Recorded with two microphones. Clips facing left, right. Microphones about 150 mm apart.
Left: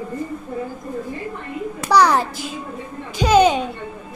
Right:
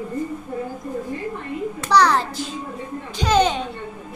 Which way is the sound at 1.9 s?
10° left (ahead or behind).